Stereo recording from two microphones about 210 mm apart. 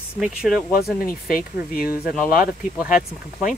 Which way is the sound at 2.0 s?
5° right (ahead or behind).